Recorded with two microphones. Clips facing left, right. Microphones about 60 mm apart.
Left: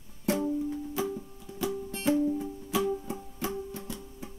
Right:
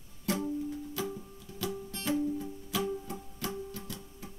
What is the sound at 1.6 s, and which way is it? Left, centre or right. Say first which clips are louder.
Music: left 5 dB; left.